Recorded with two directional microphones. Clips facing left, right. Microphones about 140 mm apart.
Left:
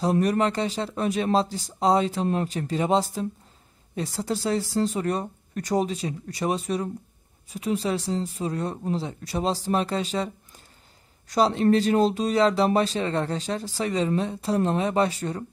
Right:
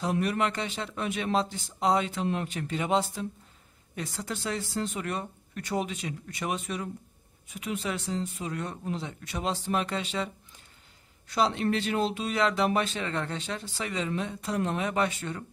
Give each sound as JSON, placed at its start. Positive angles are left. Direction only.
{"t": 0.0, "sound": "speech", "side_deg": 40}